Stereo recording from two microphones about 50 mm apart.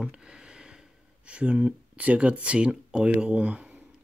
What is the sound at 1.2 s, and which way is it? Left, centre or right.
Speech, right.